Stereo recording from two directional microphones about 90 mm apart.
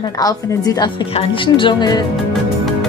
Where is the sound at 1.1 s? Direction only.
80° left; by 2.0 s 50° left (ahead or behind).